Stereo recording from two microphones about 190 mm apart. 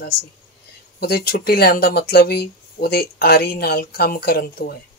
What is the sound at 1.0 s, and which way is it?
Speech, 55° left (ahead or behind).